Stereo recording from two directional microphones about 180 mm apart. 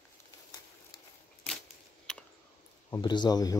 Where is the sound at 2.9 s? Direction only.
25° left (ahead or behind).